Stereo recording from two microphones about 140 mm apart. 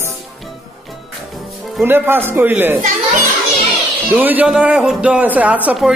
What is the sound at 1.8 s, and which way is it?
A man's voice, 15° right (ahead or behind).